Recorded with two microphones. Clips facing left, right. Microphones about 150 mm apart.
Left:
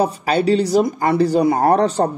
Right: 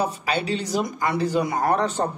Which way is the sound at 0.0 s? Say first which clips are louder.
Left 8 dB; 40° left (ahead or behind).